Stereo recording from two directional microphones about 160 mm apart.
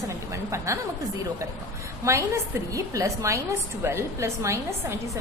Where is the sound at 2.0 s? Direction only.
20° right (ahead or behind).